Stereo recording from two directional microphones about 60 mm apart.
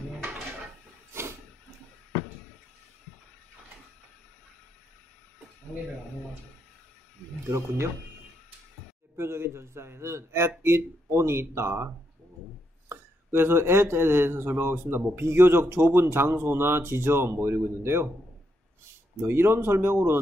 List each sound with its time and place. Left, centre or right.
7.4 s a man's voice: right
9.1 s a man's voice: right
19.2 s speech: right